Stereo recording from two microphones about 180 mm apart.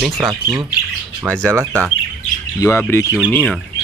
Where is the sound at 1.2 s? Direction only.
5° right (ahead or behind).